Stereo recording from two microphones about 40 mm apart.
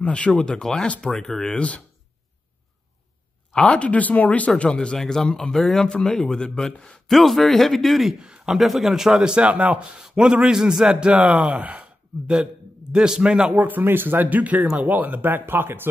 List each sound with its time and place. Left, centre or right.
0.0 s speech: left
0.4 s speech: left
1.1 s speech: centre
1.4 s speech: left
3.6 s speech: left
4.6 s speech: centre
7.1 s speech: centre
8.2 s a man's voice: right
8.5 s a man's voice: centre
9.5 s speech: right
9.9 s a man's voice: centre; by 11.9 s right
12.9 s a man's voice: centre
13.5 s speech: right
13.8 s speech: right